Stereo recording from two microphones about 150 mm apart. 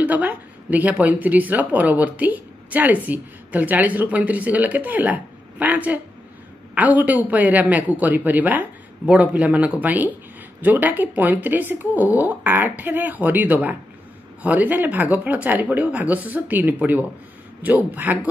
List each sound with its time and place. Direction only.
0.0 s a man's voice: 10° right (ahead or behind)